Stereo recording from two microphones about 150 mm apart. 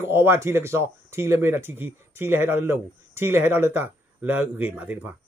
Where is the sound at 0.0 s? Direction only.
15° right (ahead or behind).